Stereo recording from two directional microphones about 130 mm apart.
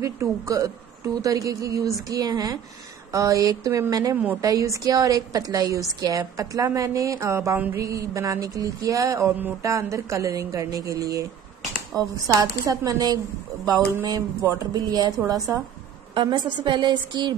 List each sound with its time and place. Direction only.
0.0 s a woman's voice: 25° right (ahead or behind)
14.5 s a woman's voice: 30° right (ahead or behind)